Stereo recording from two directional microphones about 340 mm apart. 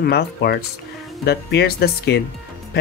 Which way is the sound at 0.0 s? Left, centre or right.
Left.